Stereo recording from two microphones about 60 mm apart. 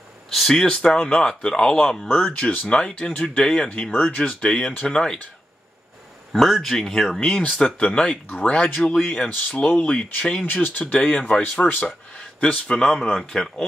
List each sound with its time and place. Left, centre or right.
0.3 s speech: centre
0.7 s speech: centre
6.3 s speech: centre
7.2 s speech: centre
9.3 s speech: left
10.4 s speech: left
12.7 s speech: centre